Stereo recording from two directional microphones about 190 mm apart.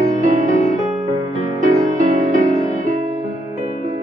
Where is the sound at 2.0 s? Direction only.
40° right (ahead or behind).